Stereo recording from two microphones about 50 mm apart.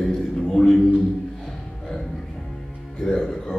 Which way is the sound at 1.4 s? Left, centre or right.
Centre.